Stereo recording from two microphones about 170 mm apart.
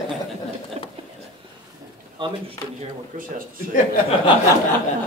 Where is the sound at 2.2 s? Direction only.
30° right (ahead or behind).